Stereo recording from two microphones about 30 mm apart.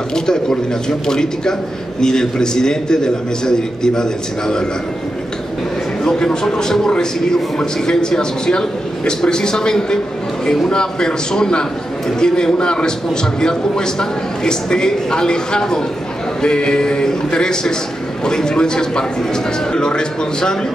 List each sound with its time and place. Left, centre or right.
0.1 s a man's voice: left
6.0 s a man's voice: left